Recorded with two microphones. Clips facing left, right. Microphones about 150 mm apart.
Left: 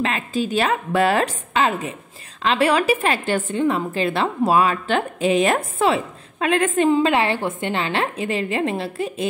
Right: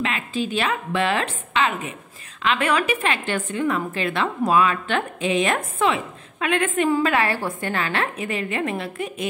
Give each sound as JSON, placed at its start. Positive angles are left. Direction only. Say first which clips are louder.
{"t": 0.0, "sound": "a woman's voice", "louder": "left 3 dB", "side_deg": 40}